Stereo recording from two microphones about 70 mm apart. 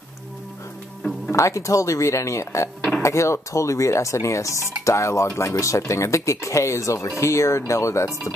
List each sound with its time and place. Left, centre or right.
1.3 s speech: left